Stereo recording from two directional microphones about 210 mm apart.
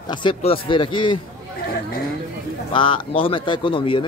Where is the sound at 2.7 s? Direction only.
25° left (ahead or behind).